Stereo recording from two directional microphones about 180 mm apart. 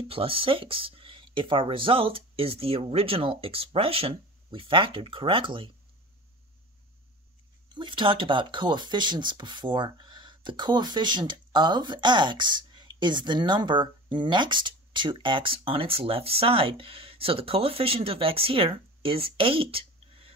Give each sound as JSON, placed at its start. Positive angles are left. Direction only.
{"t": 0.1, "sound": "speech", "side_deg": -30}
{"t": 7.7, "sound": "speech", "side_deg": -25}